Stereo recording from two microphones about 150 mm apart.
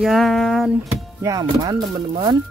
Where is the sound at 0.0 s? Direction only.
Centre (ahead or behind).